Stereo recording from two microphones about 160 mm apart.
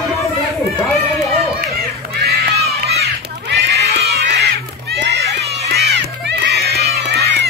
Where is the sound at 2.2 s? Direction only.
85° right.